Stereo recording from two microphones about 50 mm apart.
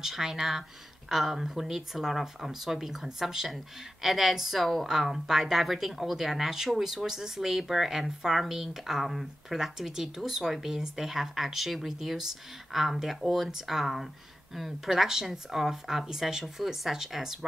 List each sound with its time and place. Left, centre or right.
0.0 s speech: centre